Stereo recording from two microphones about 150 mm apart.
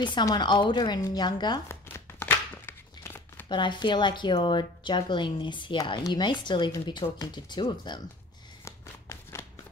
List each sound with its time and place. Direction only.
0.0 s a woman's voice: 30° left (ahead or behind)
1.7 s crumpling: 15° left (ahead or behind)
3.4 s speech: 30° left (ahead or behind)
8.6 s shuffling cards: 20° left (ahead or behind)